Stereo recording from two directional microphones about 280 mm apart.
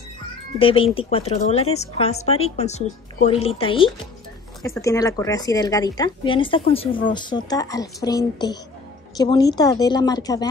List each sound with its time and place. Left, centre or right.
0.6 s speech: centre